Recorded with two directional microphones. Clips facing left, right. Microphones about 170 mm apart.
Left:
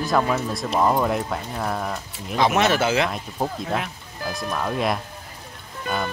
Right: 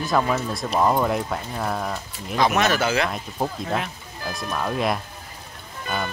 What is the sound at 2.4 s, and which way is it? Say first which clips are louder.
Speech: left 1 dB; 25° left (ahead or behind).